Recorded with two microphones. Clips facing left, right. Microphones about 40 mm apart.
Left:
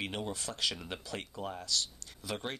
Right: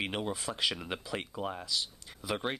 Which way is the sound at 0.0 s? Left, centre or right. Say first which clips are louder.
Right 3 dB; centre.